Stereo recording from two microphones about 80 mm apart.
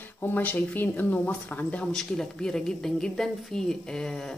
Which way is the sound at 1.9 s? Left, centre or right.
Centre.